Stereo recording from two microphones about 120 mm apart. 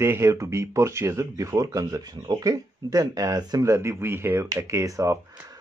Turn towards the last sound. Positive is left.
turn(degrees=-25)  # may be behind; listen again after turning